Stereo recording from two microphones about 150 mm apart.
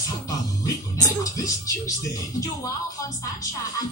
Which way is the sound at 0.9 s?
25° left (ahead or behind).